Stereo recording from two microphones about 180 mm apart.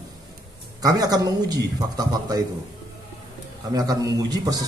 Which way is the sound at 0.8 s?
20° right (ahead or behind).